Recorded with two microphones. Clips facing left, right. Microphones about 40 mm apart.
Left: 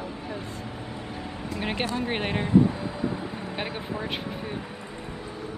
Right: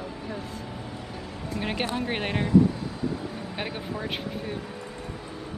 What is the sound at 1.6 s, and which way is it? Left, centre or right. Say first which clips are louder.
Speech: even; centre.